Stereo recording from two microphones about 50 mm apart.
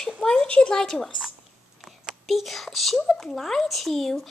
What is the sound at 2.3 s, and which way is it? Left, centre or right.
Speech, centre.